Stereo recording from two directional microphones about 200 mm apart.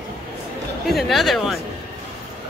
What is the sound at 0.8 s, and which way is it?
Speech, centre (ahead or behind).